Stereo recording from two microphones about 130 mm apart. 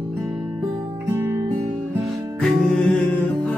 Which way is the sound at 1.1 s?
20° right (ahead or behind).